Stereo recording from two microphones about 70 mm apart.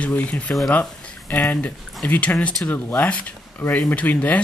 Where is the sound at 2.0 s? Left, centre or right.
Left.